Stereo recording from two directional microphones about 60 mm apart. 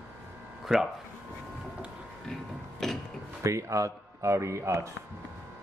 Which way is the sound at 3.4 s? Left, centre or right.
Right.